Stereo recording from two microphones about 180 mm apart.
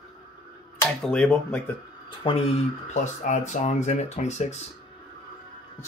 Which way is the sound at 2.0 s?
30° left (ahead or behind).